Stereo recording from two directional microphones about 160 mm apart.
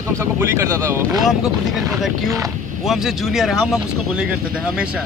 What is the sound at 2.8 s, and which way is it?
Speech, centre (ahead or behind).